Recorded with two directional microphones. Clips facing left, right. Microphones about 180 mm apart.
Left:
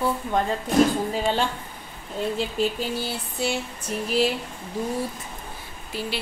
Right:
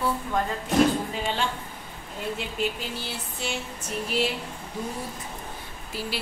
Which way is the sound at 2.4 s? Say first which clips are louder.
Left 4 dB; 35° left (ahead or behind).